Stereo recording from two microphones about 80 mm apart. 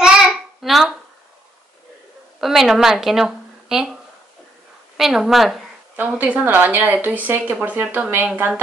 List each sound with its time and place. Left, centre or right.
0.0 s child singing: centre
2.4 s a woman's voice: centre
4.9 s a woman's voice: centre
5.9 s a woman's voice: right